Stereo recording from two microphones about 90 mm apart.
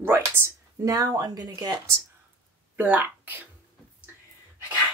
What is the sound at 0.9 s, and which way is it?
Speech, 45° right (ahead or behind).